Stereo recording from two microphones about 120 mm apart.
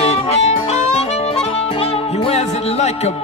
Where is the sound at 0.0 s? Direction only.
60° left (ahead or behind).